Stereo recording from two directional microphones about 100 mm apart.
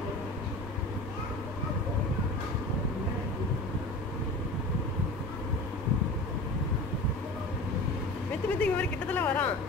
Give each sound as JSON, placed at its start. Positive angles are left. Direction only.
{"t": 8.5, "sound": "speech", "side_deg": 15}